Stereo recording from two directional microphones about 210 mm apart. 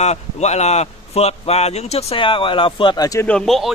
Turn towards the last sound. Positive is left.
turn(degrees=0)  # may be behind; listen again after turning